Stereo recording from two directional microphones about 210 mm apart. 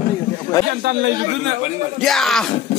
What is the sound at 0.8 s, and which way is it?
Speech, 50° right (ahead or behind).